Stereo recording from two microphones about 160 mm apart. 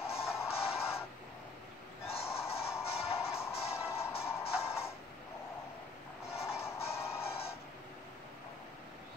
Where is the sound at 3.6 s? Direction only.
15° left (ahead or behind).